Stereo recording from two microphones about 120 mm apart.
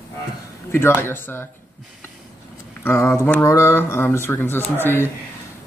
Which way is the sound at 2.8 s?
20° left (ahead or behind).